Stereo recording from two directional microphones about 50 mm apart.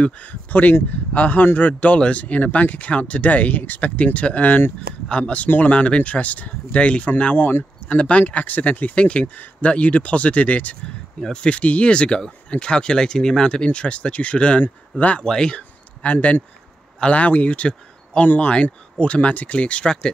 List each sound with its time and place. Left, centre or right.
0.0 s speech: left
5.0 s speech: centre
7.3 s speech: left
7.9 s speech: left
11.1 s speech: centre; by 15.2 s left
15.2 s speech: centre
18.2 s speech: left
18.5 s speech: left